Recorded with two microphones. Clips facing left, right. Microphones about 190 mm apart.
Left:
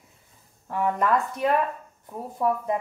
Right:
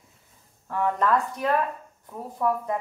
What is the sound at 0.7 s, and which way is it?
Speech, 15° left (ahead or behind).